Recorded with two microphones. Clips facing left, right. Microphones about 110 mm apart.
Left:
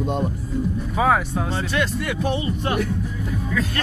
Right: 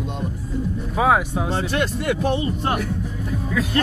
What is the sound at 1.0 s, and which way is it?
Speech, 5° right (ahead or behind).